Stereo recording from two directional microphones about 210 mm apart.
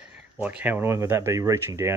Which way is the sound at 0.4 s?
5° right (ahead or behind).